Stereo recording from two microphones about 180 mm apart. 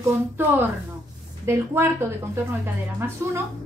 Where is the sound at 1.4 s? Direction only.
15° right (ahead or behind).